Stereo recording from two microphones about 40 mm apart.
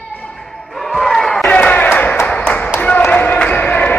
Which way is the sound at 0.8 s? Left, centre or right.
Centre.